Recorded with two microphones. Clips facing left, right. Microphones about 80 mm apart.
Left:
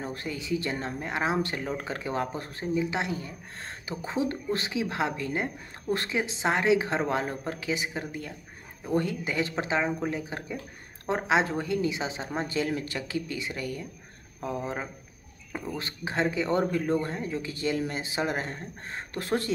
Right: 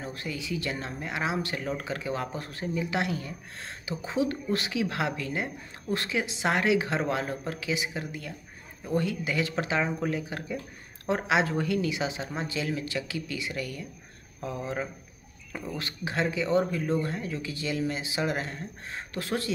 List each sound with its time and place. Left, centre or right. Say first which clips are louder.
0.0 s speech: left 1 dB; left
9.8 s speech: even; centre
10.1 s speech: right 1 dB; left
16.9 s speech: left 1 dB; left